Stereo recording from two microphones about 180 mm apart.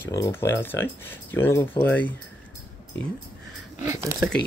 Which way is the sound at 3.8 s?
15° right (ahead or behind).